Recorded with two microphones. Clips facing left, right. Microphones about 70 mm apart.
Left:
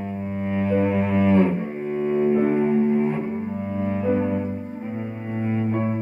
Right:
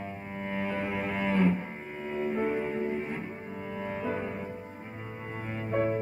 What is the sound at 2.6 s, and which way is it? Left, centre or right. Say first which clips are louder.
Music: left 11 dB; centre.